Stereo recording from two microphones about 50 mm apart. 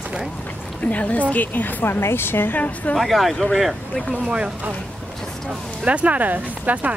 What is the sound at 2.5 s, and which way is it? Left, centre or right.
Speech, left.